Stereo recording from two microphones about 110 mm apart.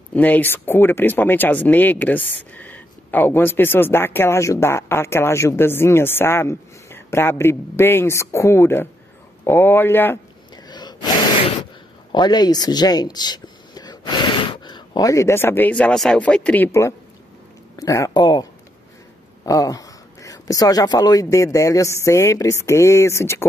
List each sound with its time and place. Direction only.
0.1 s speech: 15° left (ahead or behind)
10.5 s gasp: 40° left (ahead or behind)
12.1 s speech: 40° left (ahead or behind); by 23.4 s 25° left (ahead or behind)